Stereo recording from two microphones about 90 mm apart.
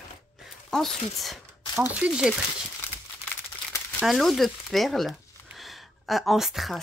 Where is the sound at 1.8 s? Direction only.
10° right (ahead or behind).